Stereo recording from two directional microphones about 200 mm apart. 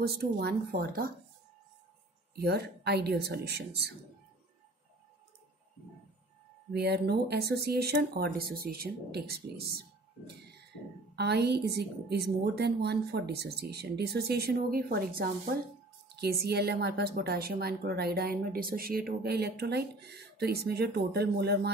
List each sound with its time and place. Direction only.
0.0 s speech: 50° right (ahead or behind)
2.3 s a woman's voice: 55° right (ahead or behind)
6.7 s speech: 55° right (ahead or behind)
11.1 s speech: 55° right (ahead or behind)